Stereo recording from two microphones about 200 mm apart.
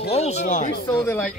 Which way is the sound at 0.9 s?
10° left (ahead or behind).